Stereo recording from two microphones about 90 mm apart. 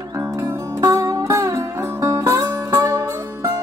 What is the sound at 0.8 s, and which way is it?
Music, 40° right (ahead or behind).